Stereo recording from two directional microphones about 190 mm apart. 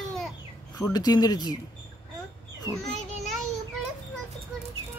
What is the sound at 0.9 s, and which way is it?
Speech, 20° left (ahead or behind).